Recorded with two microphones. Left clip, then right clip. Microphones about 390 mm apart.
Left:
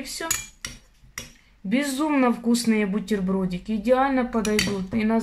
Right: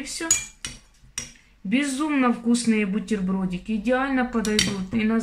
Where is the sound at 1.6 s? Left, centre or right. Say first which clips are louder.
Even; centre.